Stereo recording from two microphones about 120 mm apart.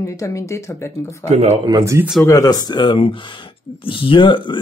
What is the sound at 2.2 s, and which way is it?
Speech, 30° left (ahead or behind).